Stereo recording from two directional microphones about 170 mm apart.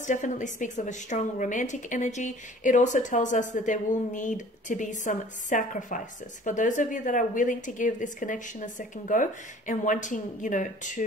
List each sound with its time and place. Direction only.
0.0 s a woman's voice: 45° left (ahead or behind)